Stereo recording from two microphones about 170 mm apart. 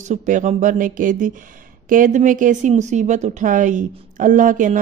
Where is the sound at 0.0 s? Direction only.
45° right (ahead or behind).